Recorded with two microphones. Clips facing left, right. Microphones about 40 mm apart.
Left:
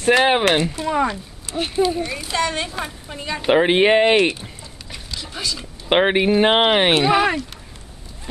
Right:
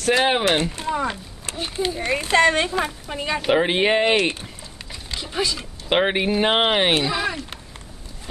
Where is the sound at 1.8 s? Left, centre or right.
Right.